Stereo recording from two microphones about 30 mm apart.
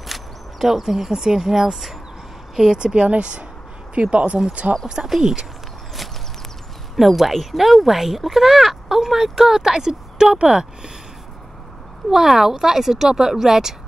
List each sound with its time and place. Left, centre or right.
0.0 s a sound: centre
0.7 s speech: centre
2.7 s speech: right
3.1 s speech: right
5.2 s speech: right
7.0 s speech: centre; by 10.7 s right
12.1 s speech: centre